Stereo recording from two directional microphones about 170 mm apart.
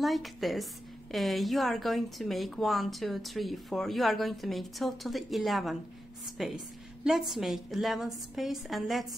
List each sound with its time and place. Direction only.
0.0 s a woman's voice: centre (ahead or behind)